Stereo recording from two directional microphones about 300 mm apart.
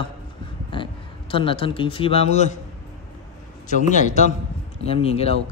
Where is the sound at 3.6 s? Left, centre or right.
Left.